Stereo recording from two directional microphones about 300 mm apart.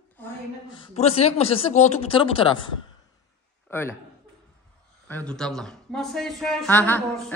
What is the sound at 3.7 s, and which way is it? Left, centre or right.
Speech, centre.